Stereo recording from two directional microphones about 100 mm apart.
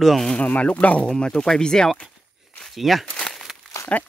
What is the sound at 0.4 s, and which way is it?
Speech, 15° left (ahead or behind).